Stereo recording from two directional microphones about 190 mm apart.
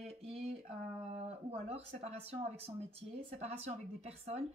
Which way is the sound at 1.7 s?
35° right (ahead or behind).